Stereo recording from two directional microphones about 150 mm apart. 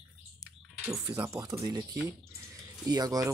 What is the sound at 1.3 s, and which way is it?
Speech, 20° right (ahead or behind).